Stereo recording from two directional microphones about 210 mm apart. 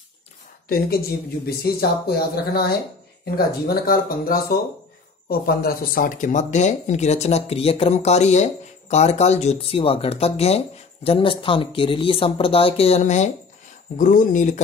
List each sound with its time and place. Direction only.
0.7 s speech: 45° left (ahead or behind)